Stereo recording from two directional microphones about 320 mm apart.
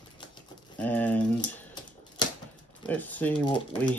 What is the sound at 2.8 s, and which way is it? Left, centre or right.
Speech, centre.